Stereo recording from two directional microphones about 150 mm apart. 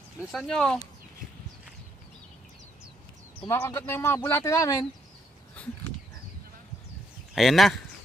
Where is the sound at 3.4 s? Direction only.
15° left (ahead or behind).